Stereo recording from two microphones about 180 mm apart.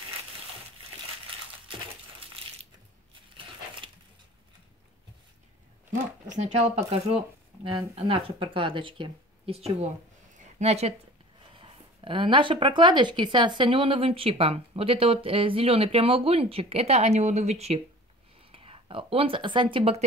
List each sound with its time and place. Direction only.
3.3 s crumpling: 30° right (ahead or behind)
6.3 s speech: 35° right (ahead or behind)
10.3 s a sound: 35° right (ahead or behind)
11.5 s speech: 30° right (ahead or behind)